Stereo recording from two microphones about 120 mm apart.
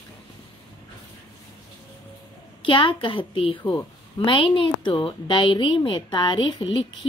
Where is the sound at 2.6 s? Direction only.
45° left (ahead or behind).